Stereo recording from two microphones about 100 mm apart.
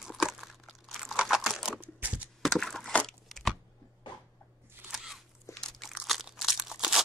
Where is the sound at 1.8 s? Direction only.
15° right (ahead or behind).